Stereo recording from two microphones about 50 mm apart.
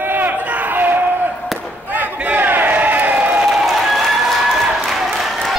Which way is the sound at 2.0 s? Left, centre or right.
Right.